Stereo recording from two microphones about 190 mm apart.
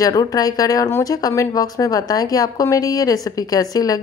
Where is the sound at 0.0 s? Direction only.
20° left (ahead or behind).